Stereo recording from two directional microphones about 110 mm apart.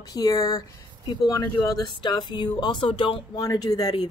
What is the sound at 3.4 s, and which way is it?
Speech, 35° left (ahead or behind).